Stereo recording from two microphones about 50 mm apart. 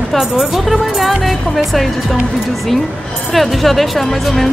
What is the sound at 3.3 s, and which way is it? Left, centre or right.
Speech, centre.